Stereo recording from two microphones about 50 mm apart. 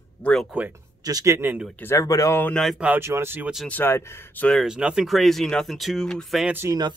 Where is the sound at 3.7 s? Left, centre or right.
Left.